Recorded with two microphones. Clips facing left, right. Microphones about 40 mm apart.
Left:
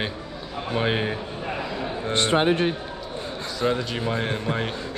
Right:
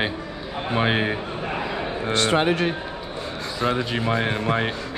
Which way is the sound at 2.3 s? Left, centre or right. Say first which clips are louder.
Left 1 dB; right.